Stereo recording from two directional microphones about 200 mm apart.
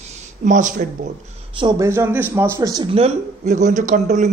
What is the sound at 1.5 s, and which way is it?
Speech, 20° right (ahead or behind).